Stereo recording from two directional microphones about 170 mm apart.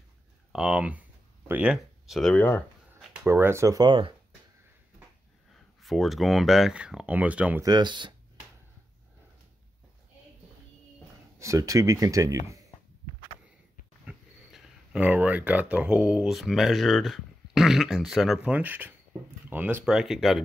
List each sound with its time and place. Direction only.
0.5 s speech: 5° right (ahead or behind)
3.3 s speech: 15° right (ahead or behind)
5.8 s speech: centre (ahead or behind)
7.6 s speech: 25° right (ahead or behind)
11.3 s speech: 20° right (ahead or behind)
14.0 s speech: 5° right (ahead or behind)